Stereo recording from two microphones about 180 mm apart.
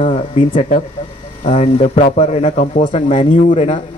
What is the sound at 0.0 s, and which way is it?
A man's voice, 35° left (ahead or behind).